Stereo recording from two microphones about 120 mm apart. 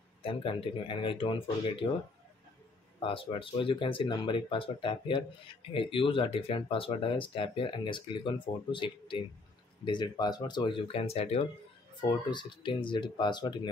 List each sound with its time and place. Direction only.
0.2 s speech: 50° left (ahead or behind)
3.0 s speech: 50° left (ahead or behind)
12.0 s speech: 40° left (ahead or behind)